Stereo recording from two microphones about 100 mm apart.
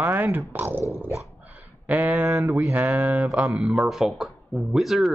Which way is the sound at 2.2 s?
30° right (ahead or behind).